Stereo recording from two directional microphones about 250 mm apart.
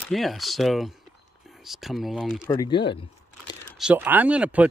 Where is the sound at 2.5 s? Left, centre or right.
Centre.